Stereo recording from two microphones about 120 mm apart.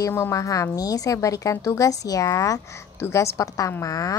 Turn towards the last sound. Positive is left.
turn(degrees=30)  # may be behind; listen again after turning